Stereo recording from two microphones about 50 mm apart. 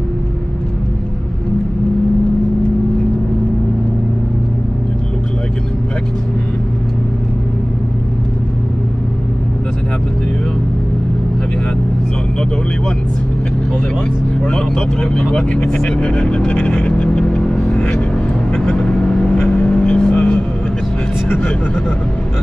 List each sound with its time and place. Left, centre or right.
14.4 s vehicle: centre